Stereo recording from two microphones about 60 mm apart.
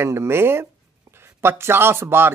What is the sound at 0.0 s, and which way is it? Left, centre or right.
Speech, right.